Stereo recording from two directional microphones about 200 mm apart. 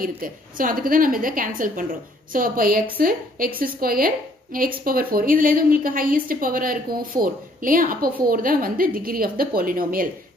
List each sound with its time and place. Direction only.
0.0 s a woman's voice: 45° right (ahead or behind)